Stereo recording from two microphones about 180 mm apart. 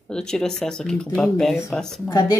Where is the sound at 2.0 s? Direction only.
20° left (ahead or behind).